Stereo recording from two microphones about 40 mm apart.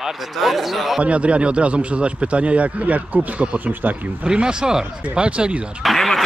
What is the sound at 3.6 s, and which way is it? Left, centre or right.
Speech, right.